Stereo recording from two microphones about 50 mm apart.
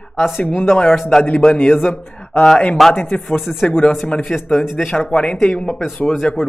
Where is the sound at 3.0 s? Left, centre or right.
Centre.